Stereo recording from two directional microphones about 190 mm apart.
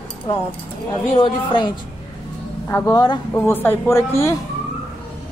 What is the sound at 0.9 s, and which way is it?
Speech, 25° left (ahead or behind).